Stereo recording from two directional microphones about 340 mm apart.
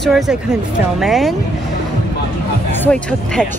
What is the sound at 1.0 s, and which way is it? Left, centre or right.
Speech, centre.